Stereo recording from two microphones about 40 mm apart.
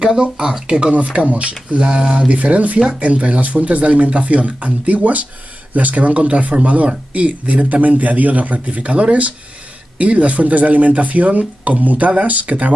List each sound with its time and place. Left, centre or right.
0.0 s speech: centre
1.1 s speech: right